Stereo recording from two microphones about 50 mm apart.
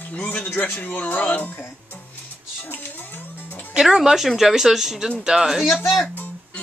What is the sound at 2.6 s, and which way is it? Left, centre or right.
Cat, left.